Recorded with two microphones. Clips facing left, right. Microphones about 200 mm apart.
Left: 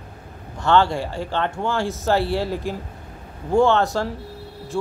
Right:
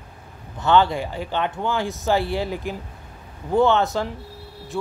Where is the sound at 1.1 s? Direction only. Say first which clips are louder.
Left 1 dB; 10° right (ahead or behind).